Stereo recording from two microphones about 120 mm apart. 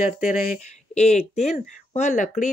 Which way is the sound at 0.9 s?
65° left (ahead or behind).